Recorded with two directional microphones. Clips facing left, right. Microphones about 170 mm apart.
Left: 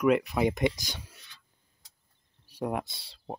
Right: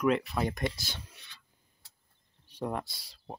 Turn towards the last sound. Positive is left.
turn(degrees=30)  # may be behind; listen again after turning